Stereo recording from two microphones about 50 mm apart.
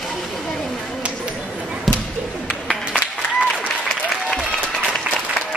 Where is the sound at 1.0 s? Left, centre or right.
Right.